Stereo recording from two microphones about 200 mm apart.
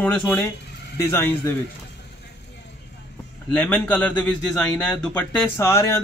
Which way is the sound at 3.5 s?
10° left (ahead or behind).